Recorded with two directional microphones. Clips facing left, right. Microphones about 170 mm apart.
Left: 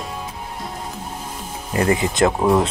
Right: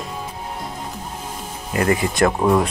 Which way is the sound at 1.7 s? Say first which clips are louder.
Even; 25° left (ahead or behind).